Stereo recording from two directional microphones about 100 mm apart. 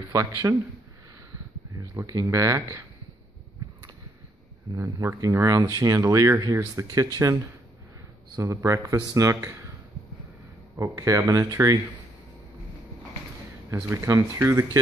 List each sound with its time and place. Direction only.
0.1 s speech: 35° right (ahead or behind)
1.8 s speech: 30° right (ahead or behind)
4.7 s speech: 30° right (ahead or behind)
8.4 s speech: 30° right (ahead or behind)
10.8 s speech: 30° right (ahead or behind)
14.0 s speech: 30° right (ahead or behind)